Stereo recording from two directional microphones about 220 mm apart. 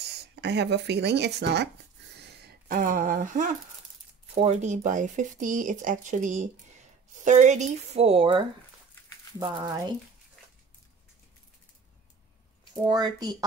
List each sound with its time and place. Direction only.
0.4 s speech: 50° right (ahead or behind)
2.4 s speech: 40° right (ahead or behind); by 9.9 s 15° right (ahead or behind)
12.8 s speech: 20° right (ahead or behind)